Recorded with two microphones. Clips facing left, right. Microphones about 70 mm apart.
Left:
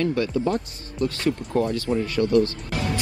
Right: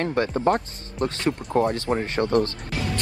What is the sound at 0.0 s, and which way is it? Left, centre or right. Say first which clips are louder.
Speech: even; right.